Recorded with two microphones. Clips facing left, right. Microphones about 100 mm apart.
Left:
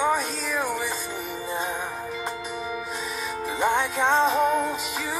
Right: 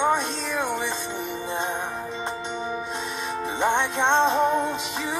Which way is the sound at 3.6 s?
Centre (ahead or behind).